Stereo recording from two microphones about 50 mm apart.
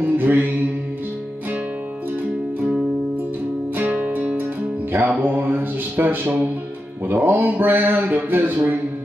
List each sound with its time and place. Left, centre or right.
0.0 s a man's voice: right
3.9 s music: right
7.2 s a man's voice: right